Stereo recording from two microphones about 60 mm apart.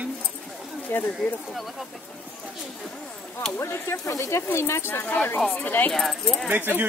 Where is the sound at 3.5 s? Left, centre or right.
Left.